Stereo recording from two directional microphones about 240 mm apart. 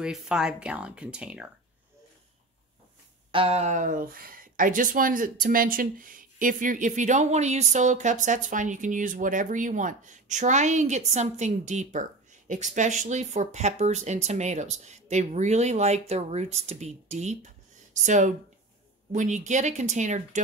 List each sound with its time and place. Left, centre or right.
0.0 s speech: centre
3.3 s speech: right